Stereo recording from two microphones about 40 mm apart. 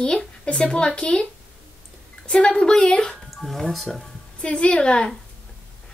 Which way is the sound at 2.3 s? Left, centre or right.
Left.